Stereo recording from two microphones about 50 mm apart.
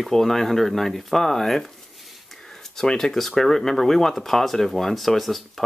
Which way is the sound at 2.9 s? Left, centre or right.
Centre.